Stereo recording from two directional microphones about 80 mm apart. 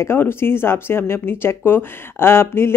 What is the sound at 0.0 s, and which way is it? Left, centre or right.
Speech, left.